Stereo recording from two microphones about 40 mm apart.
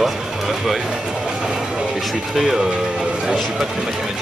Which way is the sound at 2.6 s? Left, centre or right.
Right.